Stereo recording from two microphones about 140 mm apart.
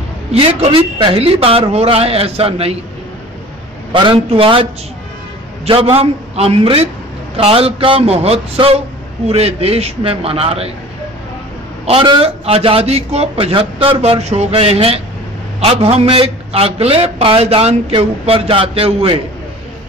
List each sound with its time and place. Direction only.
0.3 s a man's voice: 45° right (ahead or behind)
3.9 s a man's voice: 35° right (ahead or behind)
5.7 s a man's voice: 40° right (ahead or behind)
11.8 s a man's voice: 45° right (ahead or behind)